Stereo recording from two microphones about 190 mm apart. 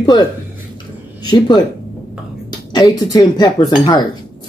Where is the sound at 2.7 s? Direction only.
20° left (ahead or behind).